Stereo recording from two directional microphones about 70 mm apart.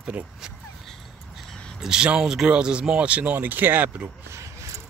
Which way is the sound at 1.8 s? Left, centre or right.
Centre.